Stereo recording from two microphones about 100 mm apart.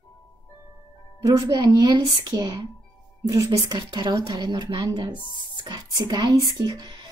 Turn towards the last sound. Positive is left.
turn(degrees=-45)  # may be behind; listen again after turning